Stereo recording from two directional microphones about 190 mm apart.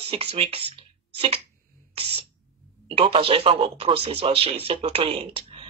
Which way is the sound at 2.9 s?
30° right (ahead or behind).